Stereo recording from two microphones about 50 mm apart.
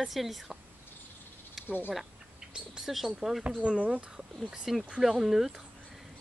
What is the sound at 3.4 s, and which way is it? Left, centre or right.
Speech, centre.